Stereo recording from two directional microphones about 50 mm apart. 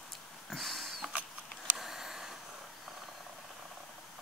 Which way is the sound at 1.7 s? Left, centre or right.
Centre.